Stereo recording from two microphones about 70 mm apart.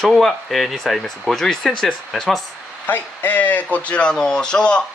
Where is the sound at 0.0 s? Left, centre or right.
Centre.